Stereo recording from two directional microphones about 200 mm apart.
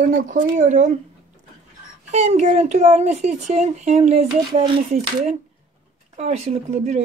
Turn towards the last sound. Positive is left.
turn(degrees=-35)  # may be behind; listen again after turning